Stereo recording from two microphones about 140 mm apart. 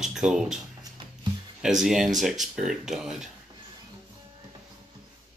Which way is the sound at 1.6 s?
5° right (ahead or behind).